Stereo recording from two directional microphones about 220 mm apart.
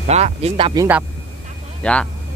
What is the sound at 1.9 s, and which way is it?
Speech, 5° left (ahead or behind).